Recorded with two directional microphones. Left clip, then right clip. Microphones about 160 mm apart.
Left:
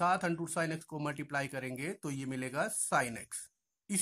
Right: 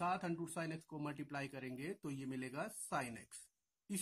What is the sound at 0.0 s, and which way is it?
Speech, 20° left (ahead or behind).